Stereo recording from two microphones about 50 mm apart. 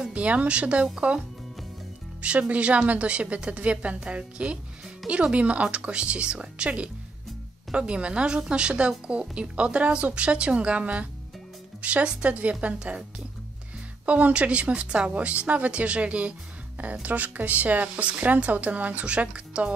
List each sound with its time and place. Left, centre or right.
0.1 s a woman's voice: right
2.2 s a woman's voice: right
14.0 s a woman's voice: right